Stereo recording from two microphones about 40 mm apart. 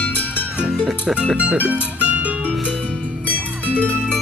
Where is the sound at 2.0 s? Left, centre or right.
Right.